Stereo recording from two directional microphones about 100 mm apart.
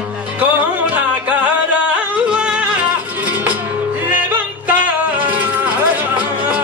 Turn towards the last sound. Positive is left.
turn(degrees=-15)  # may be behind; listen again after turning